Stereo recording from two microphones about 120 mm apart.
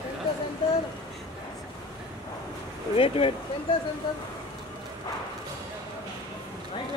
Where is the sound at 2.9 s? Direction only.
50° left (ahead or behind).